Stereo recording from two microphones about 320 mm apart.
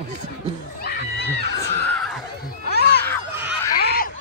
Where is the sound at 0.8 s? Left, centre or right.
Left.